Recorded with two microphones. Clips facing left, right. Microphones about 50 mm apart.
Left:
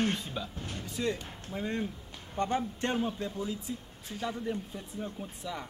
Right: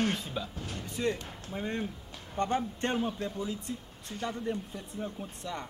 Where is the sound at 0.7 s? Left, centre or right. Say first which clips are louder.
Right 1 dB; right.